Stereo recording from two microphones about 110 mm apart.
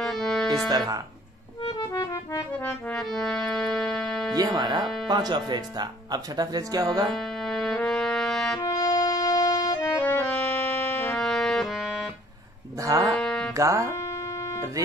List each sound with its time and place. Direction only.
0.0 s music: centre (ahead or behind)
0.7 s speech: 35° right (ahead or behind)
2.5 s music: 10° left (ahead or behind)
4.4 s speech: 40° right (ahead or behind)
7.1 s music: 5° left (ahead or behind)
8.5 s music: 30° left (ahead or behind)
9.9 s music: 15° left (ahead or behind); by 11.9 s centre (ahead or behind)
12.8 s speech: 30° right (ahead or behind)
13.2 s music: 5° left (ahead or behind)
13.6 s speech: 30° right (ahead or behind)